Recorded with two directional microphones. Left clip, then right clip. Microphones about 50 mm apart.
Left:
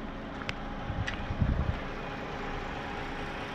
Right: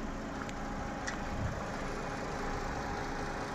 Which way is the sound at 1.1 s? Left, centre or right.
Centre.